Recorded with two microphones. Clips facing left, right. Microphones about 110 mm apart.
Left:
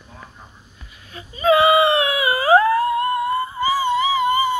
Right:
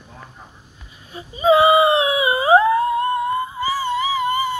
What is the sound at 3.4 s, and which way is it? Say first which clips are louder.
Music: left 2 dB; 10° right (ahead or behind).